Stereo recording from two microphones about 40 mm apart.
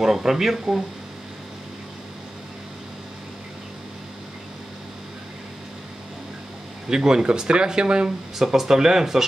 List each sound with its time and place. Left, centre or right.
0.0 s speech: centre
6.9 s speech: centre
8.4 s speech: centre